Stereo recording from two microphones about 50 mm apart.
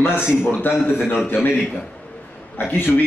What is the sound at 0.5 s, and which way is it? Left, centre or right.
Speech, left.